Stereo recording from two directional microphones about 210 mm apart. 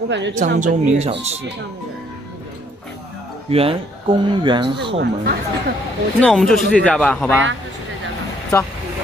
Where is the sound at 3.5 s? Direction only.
25° right (ahead or behind).